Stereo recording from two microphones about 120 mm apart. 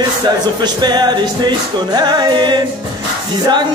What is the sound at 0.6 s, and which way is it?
Music, 35° right (ahead or behind).